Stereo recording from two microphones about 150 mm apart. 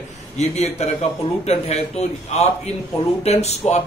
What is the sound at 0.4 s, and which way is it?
A man's voice, 45° left (ahead or behind).